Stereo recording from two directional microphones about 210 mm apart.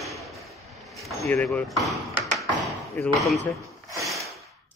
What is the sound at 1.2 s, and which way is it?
Tap, 10° left (ahead or behind).